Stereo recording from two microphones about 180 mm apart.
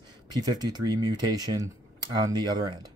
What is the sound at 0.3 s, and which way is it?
Speech, 20° right (ahead or behind).